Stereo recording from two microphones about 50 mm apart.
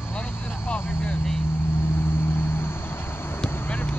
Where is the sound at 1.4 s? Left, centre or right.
Left.